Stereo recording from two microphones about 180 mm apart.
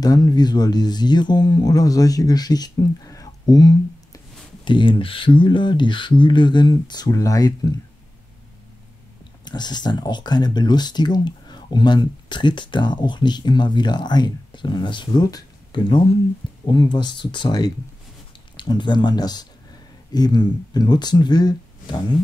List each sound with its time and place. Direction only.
0.0 s speech: 20° left (ahead or behind)
9.4 s speech: 25° left (ahead or behind)